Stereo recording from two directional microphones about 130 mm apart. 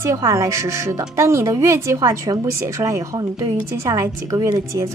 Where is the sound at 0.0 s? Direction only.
25° right (ahead or behind).